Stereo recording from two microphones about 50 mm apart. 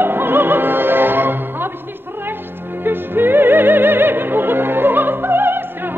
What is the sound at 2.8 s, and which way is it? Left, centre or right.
Music, right.